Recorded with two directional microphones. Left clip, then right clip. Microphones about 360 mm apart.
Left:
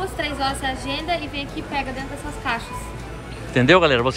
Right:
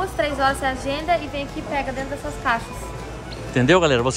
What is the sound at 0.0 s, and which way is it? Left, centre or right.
A woman's voice, centre.